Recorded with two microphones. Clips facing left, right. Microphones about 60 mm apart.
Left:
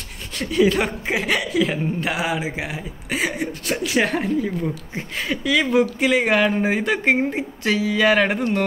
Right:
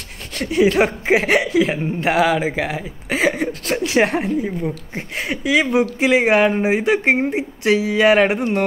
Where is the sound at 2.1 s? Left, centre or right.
Right.